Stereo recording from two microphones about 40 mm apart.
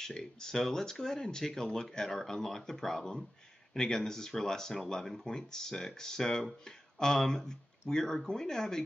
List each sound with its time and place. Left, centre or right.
0.0 s speech: centre